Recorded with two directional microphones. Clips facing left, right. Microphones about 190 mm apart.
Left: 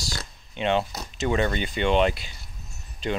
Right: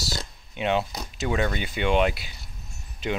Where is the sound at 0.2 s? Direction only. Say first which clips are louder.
Left 4 dB; 10° right (ahead or behind).